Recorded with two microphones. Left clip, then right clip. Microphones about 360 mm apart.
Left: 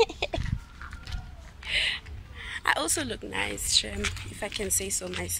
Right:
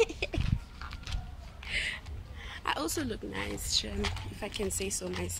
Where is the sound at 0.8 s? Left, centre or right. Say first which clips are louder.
Left 1 dB; centre.